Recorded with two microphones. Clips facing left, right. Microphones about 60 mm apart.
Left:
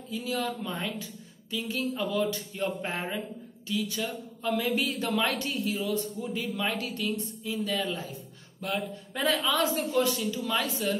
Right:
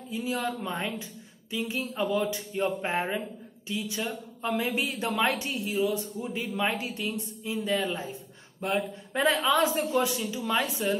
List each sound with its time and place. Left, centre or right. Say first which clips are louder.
0.1 s speech: right 1 dB; right